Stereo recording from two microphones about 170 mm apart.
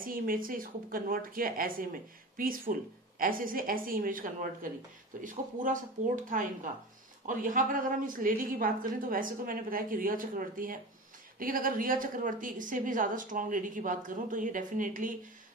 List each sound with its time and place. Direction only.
0.0 s a woman's voice: 55° right (ahead or behind)